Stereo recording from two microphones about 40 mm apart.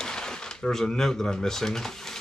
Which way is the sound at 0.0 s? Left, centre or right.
Centre.